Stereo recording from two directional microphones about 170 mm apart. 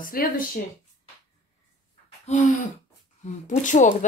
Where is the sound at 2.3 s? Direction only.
45° left (ahead or behind).